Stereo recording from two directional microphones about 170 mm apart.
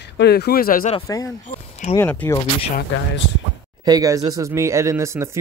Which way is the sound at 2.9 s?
90° left.